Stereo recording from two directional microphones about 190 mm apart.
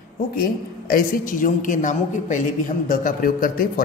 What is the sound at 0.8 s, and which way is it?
A man's voice, 45° left (ahead or behind).